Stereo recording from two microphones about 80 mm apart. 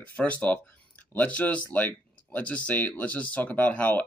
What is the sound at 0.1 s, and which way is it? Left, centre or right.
Speech, centre.